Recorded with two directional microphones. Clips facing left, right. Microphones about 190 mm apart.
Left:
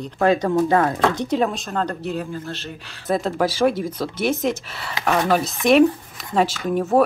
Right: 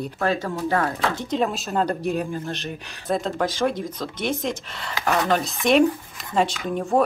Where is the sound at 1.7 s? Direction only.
10° right (ahead or behind).